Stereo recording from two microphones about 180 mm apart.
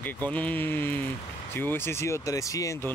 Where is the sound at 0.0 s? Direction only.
10° left (ahead or behind).